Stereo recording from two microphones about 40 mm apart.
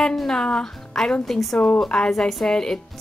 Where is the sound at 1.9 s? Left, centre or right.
Centre.